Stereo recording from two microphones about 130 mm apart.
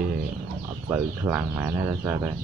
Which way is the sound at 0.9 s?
15° right (ahead or behind).